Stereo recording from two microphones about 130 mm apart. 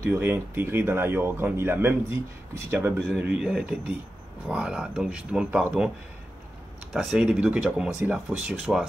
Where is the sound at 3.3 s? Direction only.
5° right (ahead or behind).